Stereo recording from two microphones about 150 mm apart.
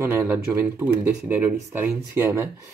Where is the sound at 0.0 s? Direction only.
20° right (ahead or behind).